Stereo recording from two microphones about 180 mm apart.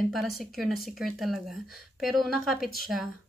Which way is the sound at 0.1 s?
Centre (ahead or behind).